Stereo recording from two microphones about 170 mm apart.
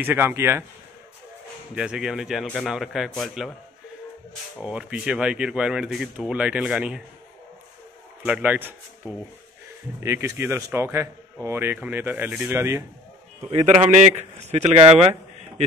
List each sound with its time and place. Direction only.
0.0 s speech: 10° right (ahead or behind)
1.8 s speech: 5° right (ahead or behind)
4.6 s speech: 5° right (ahead or behind)
8.2 s speech: 10° right (ahead or behind)
13.7 s speech: 40° right (ahead or behind)